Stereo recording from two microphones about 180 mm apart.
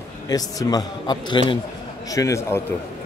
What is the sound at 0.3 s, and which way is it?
A man's voice, 20° left (ahead or behind).